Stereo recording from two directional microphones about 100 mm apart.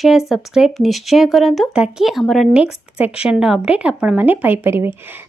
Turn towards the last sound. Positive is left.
turn(degrees=-25)  # may be behind; listen again after turning